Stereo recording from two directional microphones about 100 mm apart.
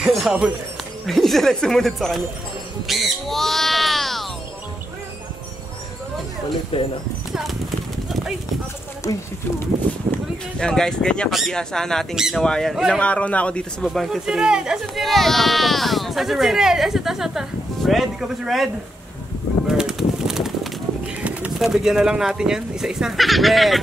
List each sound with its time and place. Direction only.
0.0 s speech: centre (ahead or behind)
2.9 s a sound: centre (ahead or behind)
6.7 s speech: 70° left (ahead or behind)
10.6 s speech: 5° left (ahead or behind)
13.0 s a man's voice: 15° left (ahead or behind)
13.8 s speech: centre (ahead or behind)
19.7 s pigeon: 5° right (ahead or behind)
21.5 s speech: 5° right (ahead or behind)